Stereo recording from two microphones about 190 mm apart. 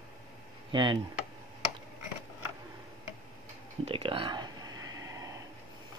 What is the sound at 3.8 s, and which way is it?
Whispering, 30° right (ahead or behind).